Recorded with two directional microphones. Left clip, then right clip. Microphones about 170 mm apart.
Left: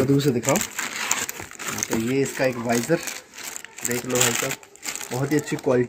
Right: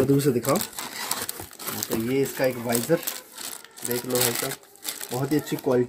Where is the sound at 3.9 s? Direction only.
5° left (ahead or behind).